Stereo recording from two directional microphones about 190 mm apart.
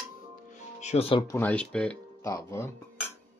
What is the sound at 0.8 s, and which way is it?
Dishes, 35° left (ahead or behind).